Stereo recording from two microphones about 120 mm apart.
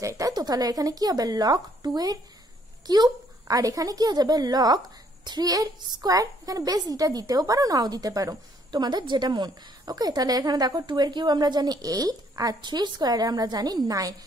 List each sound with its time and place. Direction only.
0.0 s a woman's voice: 25° right (ahead or behind)